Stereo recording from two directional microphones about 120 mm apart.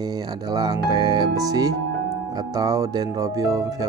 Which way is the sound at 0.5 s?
35° right (ahead or behind).